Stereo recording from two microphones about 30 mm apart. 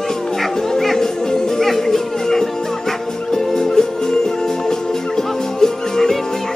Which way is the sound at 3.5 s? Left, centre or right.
Left.